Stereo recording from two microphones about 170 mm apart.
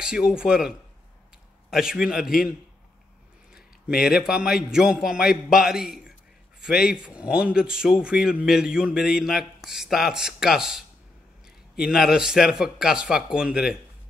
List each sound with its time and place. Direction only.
0.0 s a man's voice: 5° right (ahead or behind)
3.9 s a man's voice: 65° left (ahead or behind)
4.2 s a man's voice: centre (ahead or behind)
6.9 s a man's voice: 5° right (ahead or behind)
11.8 s a man's voice: 5° right (ahead or behind)